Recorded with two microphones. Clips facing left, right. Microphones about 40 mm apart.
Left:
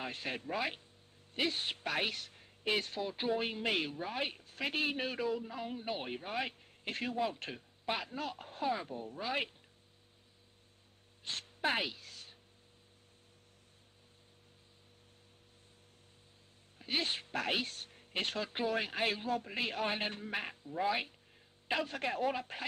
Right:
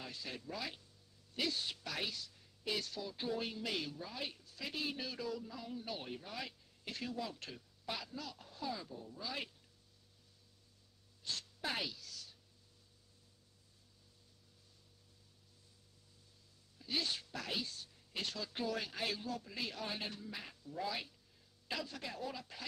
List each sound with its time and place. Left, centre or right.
0.0 s speech: left
11.2 s speech: left
16.7 s speech: left
20.6 s speech: left